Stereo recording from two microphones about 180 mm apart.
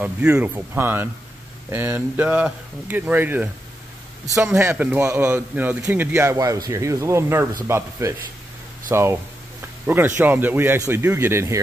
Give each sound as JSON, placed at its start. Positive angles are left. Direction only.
{"t": 0.0, "sound": "a man's voice", "side_deg": -5}
{"t": 4.6, "sound": "a man's voice", "side_deg": -10}